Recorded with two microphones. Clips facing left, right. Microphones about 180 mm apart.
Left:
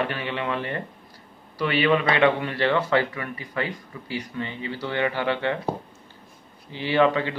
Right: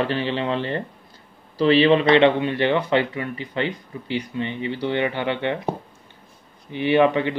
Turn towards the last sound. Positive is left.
turn(degrees=-20)  # may be behind; listen again after turning